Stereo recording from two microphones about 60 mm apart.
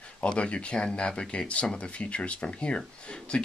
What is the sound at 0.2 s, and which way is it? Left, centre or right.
Speech, centre.